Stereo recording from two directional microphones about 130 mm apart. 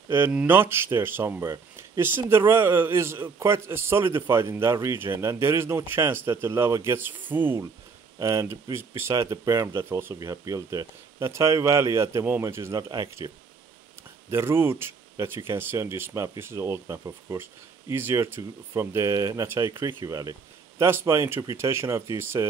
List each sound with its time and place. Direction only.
0.1 s speech: 15° right (ahead or behind); by 13.3 s 30° right (ahead or behind)
14.3 s speech: 20° right (ahead or behind)